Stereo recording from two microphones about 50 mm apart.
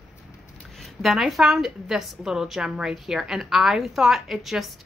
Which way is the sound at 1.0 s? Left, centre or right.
Centre.